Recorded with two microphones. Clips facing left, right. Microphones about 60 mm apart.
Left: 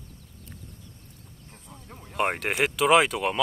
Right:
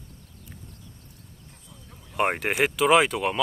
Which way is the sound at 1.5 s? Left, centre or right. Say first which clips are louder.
Left 7 dB; left.